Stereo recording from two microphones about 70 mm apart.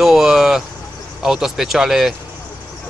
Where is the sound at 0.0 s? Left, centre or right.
Centre.